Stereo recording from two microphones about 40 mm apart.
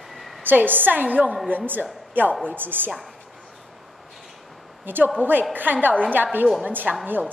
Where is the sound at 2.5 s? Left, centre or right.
Right.